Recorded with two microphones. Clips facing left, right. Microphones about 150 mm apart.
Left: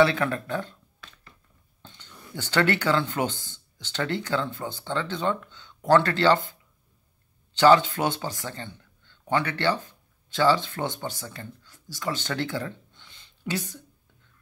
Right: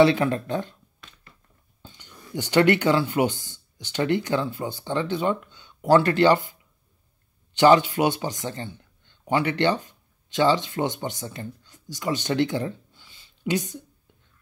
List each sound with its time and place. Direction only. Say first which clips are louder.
0.0 s speech: right 3 dB; 20° right (ahead or behind)
1.8 s speech: right 1 dB; 10° right (ahead or behind)
7.5 s speech: right 1 dB; 15° right (ahead or behind)
12.9 s a sound: even; 5° right (ahead or behind)
13.5 s speech: right 5 dB; 20° right (ahead or behind)